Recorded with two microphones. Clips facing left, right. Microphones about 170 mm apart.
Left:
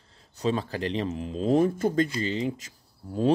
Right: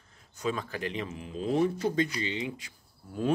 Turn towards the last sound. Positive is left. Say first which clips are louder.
# left 6 dB
turn(degrees=35)  # may be behind; listen again after turning